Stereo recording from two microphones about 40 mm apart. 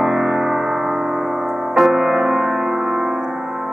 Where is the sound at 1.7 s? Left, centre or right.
Centre.